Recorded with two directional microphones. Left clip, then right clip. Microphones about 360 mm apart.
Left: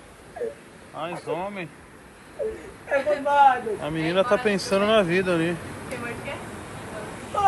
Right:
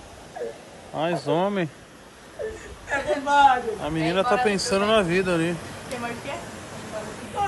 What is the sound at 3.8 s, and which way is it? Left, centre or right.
Speech, centre.